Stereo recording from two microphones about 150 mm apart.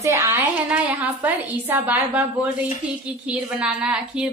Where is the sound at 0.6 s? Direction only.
10° right (ahead or behind).